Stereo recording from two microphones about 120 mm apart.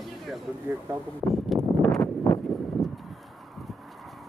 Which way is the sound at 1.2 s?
Centre (ahead or behind).